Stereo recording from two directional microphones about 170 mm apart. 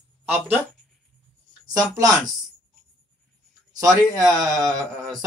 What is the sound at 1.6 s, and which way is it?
Speech, 20° right (ahead or behind).